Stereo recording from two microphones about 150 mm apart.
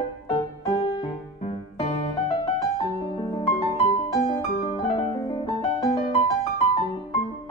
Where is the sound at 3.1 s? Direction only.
30° left (ahead or behind).